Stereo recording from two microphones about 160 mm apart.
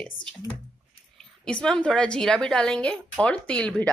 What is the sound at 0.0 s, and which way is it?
A woman's voice, 5° left (ahead or behind).